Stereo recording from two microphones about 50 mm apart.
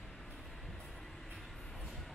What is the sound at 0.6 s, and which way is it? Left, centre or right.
Vehicle, centre.